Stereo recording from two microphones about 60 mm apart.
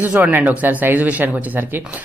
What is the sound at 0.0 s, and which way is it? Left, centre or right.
Speech, right.